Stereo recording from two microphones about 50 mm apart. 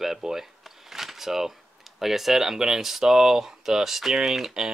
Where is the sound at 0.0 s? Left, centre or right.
Centre.